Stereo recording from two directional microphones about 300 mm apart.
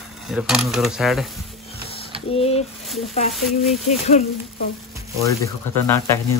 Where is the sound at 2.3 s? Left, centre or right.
Centre.